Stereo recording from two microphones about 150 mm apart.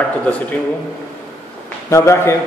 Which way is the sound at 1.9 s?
20° left (ahead or behind).